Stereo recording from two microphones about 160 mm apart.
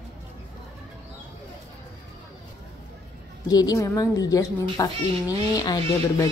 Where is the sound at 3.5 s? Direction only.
25° left (ahead or behind).